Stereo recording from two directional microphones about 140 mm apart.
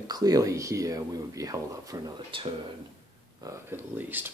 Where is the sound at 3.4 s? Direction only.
15° right (ahead or behind).